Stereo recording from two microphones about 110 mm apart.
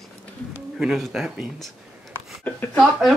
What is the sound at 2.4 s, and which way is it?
Speech, 15° left (ahead or behind).